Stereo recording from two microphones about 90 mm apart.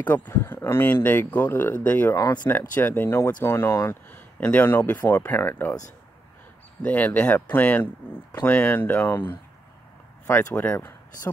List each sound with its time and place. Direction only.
0.0 s speech: 20° left (ahead or behind)
2.1 s speech: 40° left (ahead or behind)
2.4 s speech: 20° left (ahead or behind)
6.8 s speech: 15° left (ahead or behind)
10.5 s speech: 20° left (ahead or behind)